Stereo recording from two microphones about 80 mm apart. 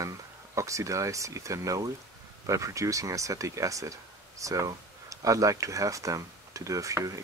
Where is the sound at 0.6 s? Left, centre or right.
Right.